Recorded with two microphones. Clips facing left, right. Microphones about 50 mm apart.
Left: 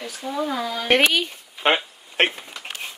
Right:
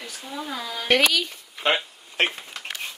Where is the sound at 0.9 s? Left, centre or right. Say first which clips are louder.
Left 2 dB; left.